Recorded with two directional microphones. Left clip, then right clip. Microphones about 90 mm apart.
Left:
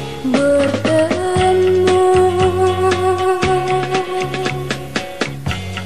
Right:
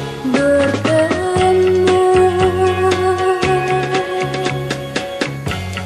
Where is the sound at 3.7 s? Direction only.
35° right (ahead or behind).